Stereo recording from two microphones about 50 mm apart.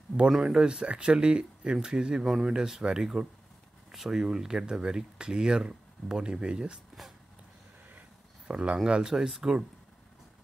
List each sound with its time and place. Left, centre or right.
0.3 s speech: centre
8.5 s speech: right